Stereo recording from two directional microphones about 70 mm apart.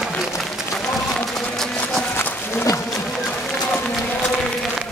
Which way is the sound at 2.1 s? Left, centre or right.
Left.